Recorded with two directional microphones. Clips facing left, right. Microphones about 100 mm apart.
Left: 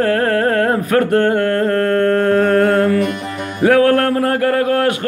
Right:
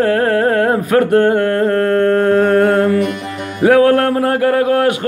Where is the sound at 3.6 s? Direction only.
15° right (ahead or behind).